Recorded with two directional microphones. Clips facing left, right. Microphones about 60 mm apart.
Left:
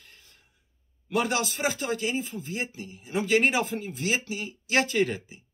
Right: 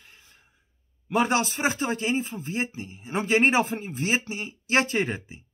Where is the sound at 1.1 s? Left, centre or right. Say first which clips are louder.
Right 3 dB; right.